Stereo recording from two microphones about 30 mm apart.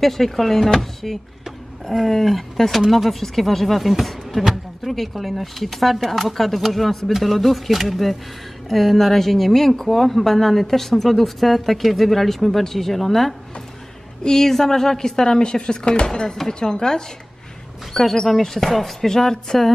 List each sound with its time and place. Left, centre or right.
0.0 s a woman's voice: centre
4.8 s a woman's voice: centre; by 17.0 s left
18.2 s a woman's voice: centre